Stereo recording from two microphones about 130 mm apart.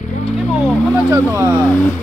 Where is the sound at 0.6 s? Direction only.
10° left (ahead or behind).